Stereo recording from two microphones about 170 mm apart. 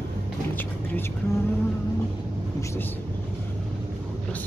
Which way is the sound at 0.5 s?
10° left (ahead or behind).